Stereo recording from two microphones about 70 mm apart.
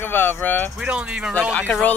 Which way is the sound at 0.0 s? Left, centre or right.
Left.